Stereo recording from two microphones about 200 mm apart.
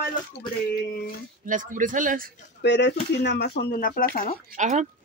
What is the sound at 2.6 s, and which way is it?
Speech, 60° left (ahead or behind).